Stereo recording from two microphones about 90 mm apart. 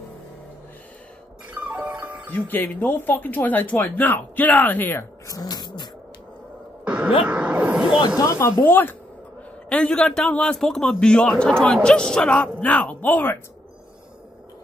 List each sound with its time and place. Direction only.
1.5 s music: 20° right (ahead or behind)
2.3 s speech: 20° left (ahead or behind)
5.3 s music: 45° left (ahead or behind)
6.8 s a sound: 15° right (ahead or behind)
8.2 s speech: 35° left (ahead or behind)
9.7 s a man's voice: 10° left (ahead or behind)